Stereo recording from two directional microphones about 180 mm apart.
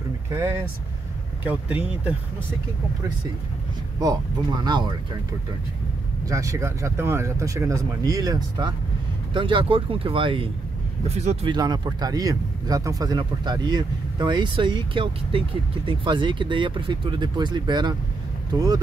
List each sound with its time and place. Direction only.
0.3 s speech: 15° right (ahead or behind)
4.6 s speech: 25° right (ahead or behind)
6.2 s speech: 15° right (ahead or behind); by 11.5 s 35° right (ahead or behind)
11.5 s speech: 25° right (ahead or behind)